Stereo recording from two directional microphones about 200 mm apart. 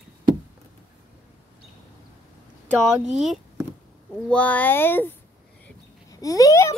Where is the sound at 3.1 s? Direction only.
Centre (ahead or behind).